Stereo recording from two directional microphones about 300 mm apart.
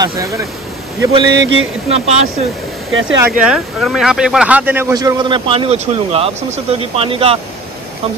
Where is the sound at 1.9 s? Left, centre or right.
Right.